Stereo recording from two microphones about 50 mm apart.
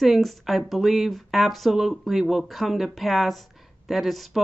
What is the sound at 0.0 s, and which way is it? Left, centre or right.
Speech, centre.